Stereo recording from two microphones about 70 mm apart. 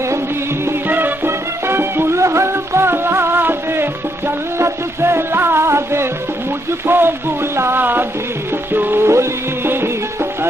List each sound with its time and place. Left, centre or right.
0.8 s music: right
6.9 s speech: right
8.7 s music: right